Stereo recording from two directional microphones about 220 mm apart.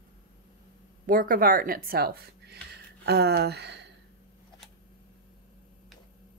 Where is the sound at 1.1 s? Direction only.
40° right (ahead or behind).